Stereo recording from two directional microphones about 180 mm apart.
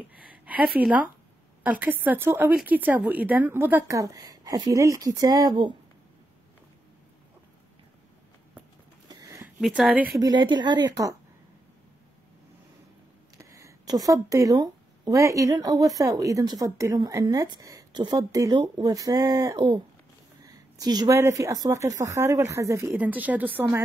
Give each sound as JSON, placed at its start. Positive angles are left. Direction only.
{"t": 0.7, "sound": "speech", "side_deg": -10}
{"t": 9.1, "sound": "a sound", "side_deg": -20}
{"t": 9.6, "sound": "speech", "side_deg": -5}
{"t": 10.1, "sound": "speech", "side_deg": -20}
{"t": 13.4, "sound": "speech", "side_deg": -15}